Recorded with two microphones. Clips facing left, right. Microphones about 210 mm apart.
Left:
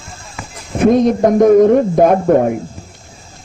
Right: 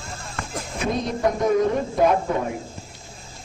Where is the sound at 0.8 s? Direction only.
50° left (ahead or behind).